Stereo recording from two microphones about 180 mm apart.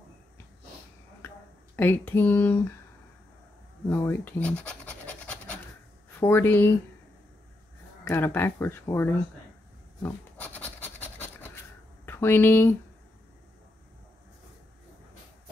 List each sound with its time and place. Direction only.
1.8 s speech: 10° left (ahead or behind)
3.9 s scratch: 15° left (ahead or behind)
6.1 s speech: 10° left (ahead or behind)
8.0 s speech: 10° left (ahead or behind)
10.0 s pant: 10° left (ahead or behind)
12.1 s speech: 10° left (ahead or behind)